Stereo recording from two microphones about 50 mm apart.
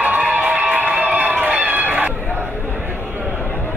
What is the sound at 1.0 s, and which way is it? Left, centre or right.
Run, right.